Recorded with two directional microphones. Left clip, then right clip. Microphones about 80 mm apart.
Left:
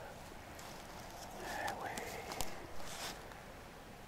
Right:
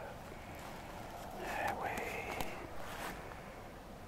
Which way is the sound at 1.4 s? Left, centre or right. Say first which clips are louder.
Right 3 dB; centre.